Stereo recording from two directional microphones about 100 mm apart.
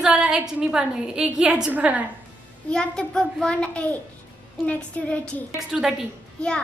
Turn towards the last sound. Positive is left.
turn(degrees=10)  # may be behind; listen again after turning